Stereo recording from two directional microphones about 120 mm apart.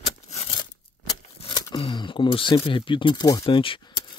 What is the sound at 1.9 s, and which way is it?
Speech, 40° left (ahead or behind).